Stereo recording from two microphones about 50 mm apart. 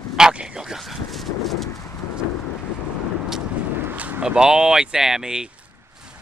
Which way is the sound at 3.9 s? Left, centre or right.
Right.